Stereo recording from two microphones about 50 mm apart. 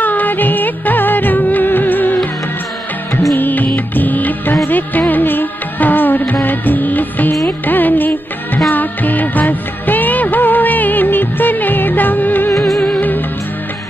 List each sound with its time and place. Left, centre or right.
0.0 s music: left
3.3 s music: left